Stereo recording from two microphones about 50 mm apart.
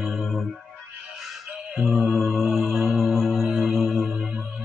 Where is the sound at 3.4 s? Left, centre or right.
Right.